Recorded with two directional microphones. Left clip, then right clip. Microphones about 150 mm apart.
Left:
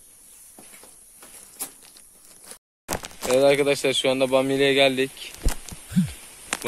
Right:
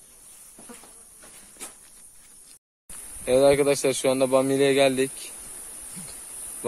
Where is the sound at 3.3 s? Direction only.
10° right (ahead or behind).